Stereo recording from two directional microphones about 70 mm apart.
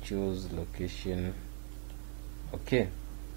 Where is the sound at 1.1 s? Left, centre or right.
Centre.